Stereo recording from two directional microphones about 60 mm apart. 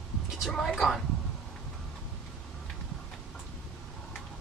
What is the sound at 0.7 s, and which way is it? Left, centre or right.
Speech, centre.